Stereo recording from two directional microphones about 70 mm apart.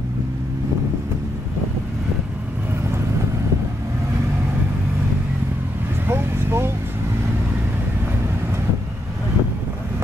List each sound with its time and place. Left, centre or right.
6.0 s vehicle: right